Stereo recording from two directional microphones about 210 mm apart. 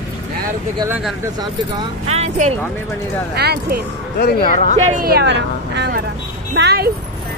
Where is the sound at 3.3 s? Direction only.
50° right (ahead or behind).